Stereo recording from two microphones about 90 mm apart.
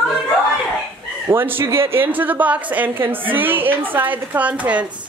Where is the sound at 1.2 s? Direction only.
25° right (ahead or behind).